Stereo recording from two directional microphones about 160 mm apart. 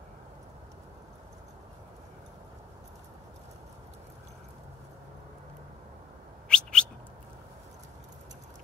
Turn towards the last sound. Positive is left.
turn(degrees=5)  # may be behind; listen again after turning